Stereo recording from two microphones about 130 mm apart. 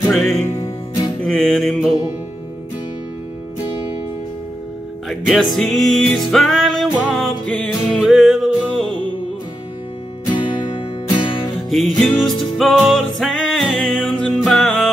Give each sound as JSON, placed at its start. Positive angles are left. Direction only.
{"t": 0.1, "sound": "music", "side_deg": 5}
{"t": 5.3, "sound": "music", "side_deg": 0}
{"t": 10.3, "sound": "music", "side_deg": 35}
{"t": 11.7, "sound": "music", "side_deg": 5}